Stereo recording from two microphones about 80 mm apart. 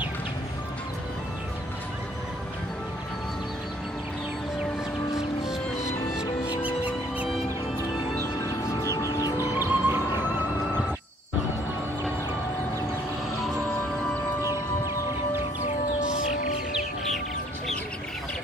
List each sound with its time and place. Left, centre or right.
5.1 s music: centre
8.9 s music: left
9.6 s music: right